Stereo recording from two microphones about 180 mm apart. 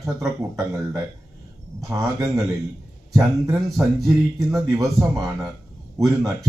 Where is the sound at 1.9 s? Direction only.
15° right (ahead or behind).